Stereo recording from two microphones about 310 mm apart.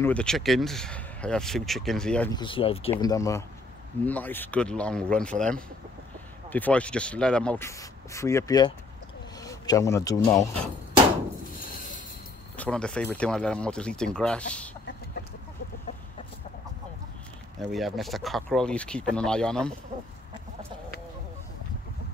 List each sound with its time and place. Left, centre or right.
0.0 s speech: centre
2.3 s speech: centre
12.5 s speech: centre
17.6 s speech: centre